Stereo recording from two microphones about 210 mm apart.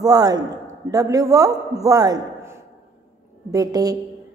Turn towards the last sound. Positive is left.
turn(degrees=-15)  # may be behind; listen again after turning